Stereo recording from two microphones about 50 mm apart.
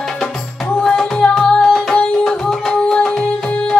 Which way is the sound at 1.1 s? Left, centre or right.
Left.